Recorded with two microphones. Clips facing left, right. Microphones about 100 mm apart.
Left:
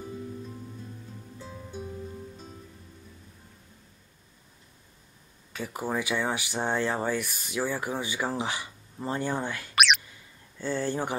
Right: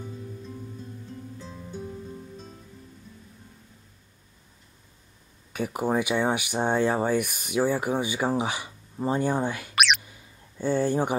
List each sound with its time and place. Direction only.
1.4 s music: 10° left (ahead or behind)
5.5 s speech: 15° right (ahead or behind)
9.8 s a sound: centre (ahead or behind)
10.6 s speech: 15° right (ahead or behind)